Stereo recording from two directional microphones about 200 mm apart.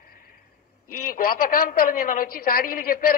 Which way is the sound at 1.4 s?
45° left (ahead or behind).